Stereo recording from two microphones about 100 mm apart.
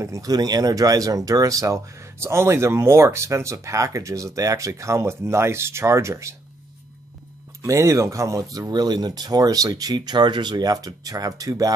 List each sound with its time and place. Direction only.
0.0 s speech: 35° right (ahead or behind)
7.6 s speech: 30° right (ahead or behind)